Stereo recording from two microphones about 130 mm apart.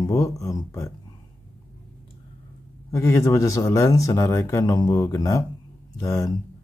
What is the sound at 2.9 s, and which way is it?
Speech, 25° left (ahead or behind).